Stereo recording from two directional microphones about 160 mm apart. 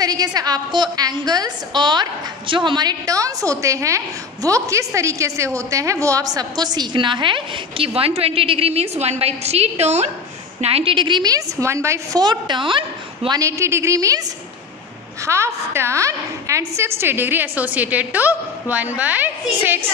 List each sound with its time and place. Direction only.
0.0 s a woman's voice: 25° right (ahead or behind)
13.4 s a woman's voice: 20° right (ahead or behind)
15.2 s a woman's voice: 15° right (ahead or behind)